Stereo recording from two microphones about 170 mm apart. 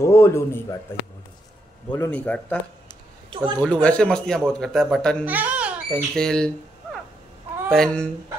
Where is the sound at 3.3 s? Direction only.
25° right (ahead or behind).